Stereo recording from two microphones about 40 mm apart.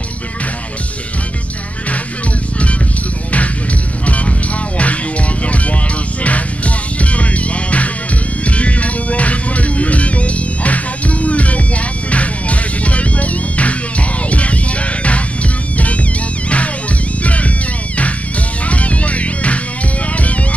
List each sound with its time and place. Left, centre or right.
4.0 s music: left
5.4 s music: left
17.2 s music: left
18.7 s music: left